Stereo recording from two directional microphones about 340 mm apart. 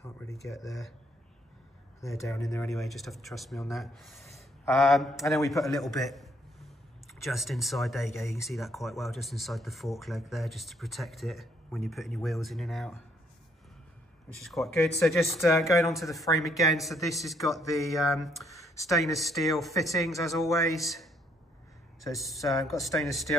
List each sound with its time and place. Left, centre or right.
0.0 s a sound: centre
0.5 s speech: centre
2.0 s speech: centre
14.4 s speech: centre